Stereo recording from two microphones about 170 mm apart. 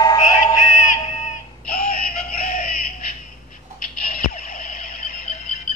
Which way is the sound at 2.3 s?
55° left (ahead or behind).